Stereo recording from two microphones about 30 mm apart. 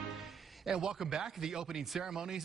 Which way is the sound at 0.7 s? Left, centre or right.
Right.